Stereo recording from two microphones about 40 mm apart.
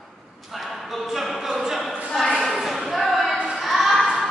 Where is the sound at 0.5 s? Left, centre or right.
Centre.